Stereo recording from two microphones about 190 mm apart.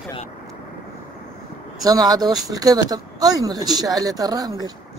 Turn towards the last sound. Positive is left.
turn(degrees=-20)  # may be behind; listen again after turning